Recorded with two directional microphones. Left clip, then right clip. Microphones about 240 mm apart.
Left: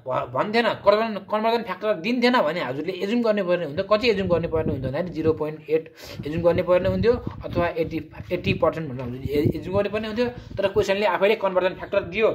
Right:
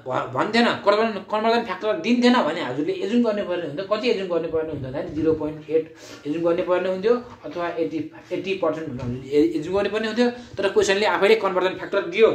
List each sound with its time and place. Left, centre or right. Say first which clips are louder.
0.1 s speech: right 1 dB; left
8.6 s speech: left 2 dB; left
9.3 s a man's voice: right 4 dB; left